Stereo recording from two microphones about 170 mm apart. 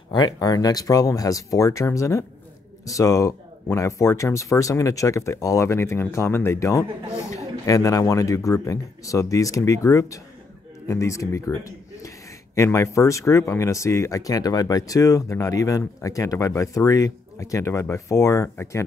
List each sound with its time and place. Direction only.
0.1 s speech: 25° left (ahead or behind)